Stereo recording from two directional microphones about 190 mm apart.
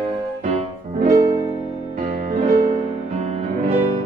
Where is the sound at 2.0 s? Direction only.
40° right (ahead or behind).